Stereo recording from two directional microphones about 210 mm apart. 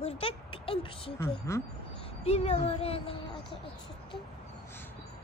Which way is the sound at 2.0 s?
30° left (ahead or behind).